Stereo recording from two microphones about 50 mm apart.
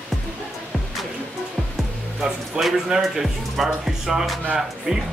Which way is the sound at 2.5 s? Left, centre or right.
Centre.